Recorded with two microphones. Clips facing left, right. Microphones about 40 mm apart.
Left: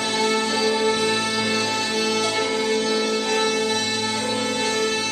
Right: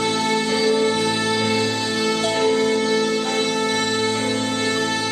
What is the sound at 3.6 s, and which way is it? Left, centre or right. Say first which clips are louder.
Music: right 3 dB; right.